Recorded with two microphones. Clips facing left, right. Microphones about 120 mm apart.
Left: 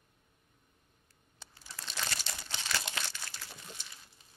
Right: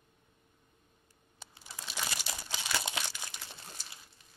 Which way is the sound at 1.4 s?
15° right (ahead or behind).